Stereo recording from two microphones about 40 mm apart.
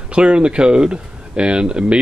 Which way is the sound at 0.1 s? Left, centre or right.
Right.